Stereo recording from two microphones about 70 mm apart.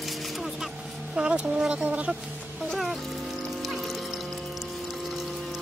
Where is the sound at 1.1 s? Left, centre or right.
Centre.